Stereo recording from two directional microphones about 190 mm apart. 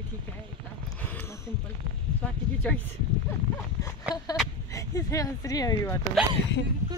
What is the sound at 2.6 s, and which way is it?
Speech, 5° left (ahead or behind).